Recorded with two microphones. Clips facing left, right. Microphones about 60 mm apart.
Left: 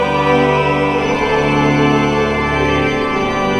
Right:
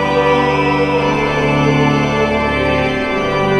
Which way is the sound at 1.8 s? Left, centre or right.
Centre.